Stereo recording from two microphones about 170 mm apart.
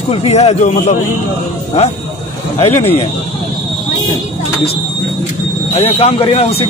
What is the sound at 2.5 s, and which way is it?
Speech, 35° left (ahead or behind).